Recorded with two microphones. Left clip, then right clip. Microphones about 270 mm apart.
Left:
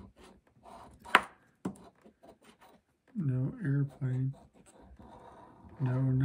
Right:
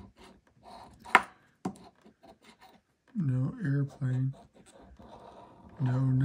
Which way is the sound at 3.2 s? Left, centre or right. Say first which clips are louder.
Right 2 dB; centre.